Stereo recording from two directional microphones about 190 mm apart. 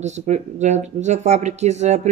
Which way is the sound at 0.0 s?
35° right (ahead or behind).